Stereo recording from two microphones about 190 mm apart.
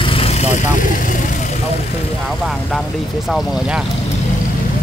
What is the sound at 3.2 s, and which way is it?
Speech, 5° right (ahead or behind).